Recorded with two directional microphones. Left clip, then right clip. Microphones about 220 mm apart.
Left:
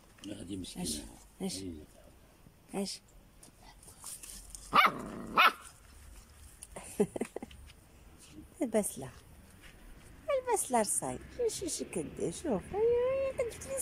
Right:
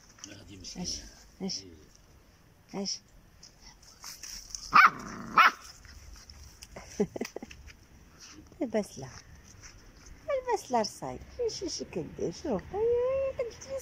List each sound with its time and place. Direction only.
0.7 s a man's voice: centre (ahead or behind)
2.7 s speech: centre (ahead or behind)
4.6 s dog: 15° left (ahead or behind)
6.7 s a sound: centre (ahead or behind)
8.5 s speech: centre (ahead or behind)
10.2 s a sound: centre (ahead or behind)
12.2 s speech: centre (ahead or behind)